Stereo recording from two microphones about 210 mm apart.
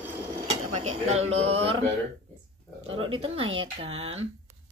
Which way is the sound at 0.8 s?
30° right (ahead or behind).